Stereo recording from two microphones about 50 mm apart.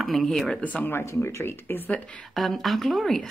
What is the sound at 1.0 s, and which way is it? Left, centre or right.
Speech, left.